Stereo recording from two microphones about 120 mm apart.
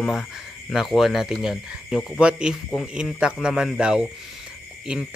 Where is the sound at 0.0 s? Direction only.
Centre (ahead or behind).